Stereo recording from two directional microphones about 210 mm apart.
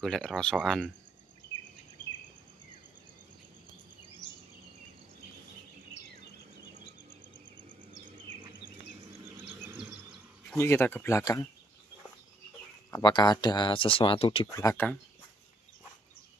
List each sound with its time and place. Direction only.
0.0 s speech: 5° left (ahead or behind)
9.6 s a sound: 10° right (ahead or behind)
10.5 s speech: 10° left (ahead or behind)
12.9 s speech: 20° left (ahead or behind)
14.5 s speech: 15° left (ahead or behind)